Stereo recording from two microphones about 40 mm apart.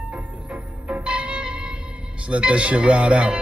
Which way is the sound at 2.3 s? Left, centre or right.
Right.